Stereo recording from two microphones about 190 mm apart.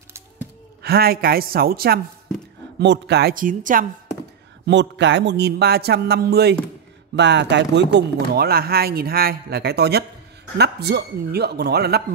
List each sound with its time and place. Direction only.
0.8 s a woman's voice: 55° right (ahead or behind)
2.8 s speech: 65° right (ahead or behind); by 3.8 s 45° right (ahead or behind)
4.6 s speech: 70° right (ahead or behind)
7.2 s speech: 65° right (ahead or behind)